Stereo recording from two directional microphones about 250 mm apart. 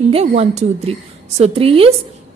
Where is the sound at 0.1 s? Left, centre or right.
Right.